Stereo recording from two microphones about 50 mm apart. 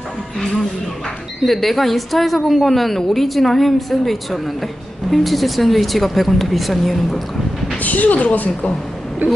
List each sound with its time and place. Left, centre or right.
1.4 s speech: centre
7.7 s a woman's voice: left
9.2 s speech: right